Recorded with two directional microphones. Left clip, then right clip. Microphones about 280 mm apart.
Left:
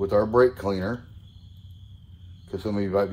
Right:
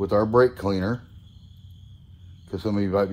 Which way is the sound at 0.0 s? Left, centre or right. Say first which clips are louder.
Right 1 dB; centre.